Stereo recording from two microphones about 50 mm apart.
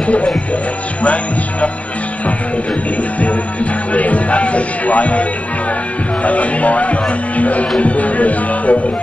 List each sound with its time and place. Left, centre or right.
0.0 s music: left
1.0 s speech: left
3.9 s music: left
6.2 s music: left